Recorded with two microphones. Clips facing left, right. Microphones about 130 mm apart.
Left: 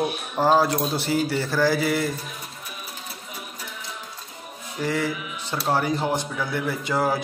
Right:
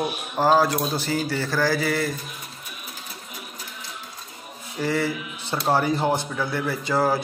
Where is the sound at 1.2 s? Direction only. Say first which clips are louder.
Left 2 dB; 25° left (ahead or behind).